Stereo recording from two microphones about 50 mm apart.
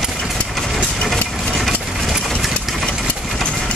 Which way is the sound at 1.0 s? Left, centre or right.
Centre.